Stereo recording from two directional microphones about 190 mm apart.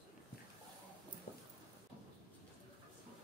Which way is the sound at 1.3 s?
50° left (ahead or behind).